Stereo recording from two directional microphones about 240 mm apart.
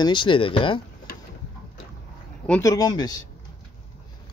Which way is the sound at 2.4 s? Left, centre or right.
Centre.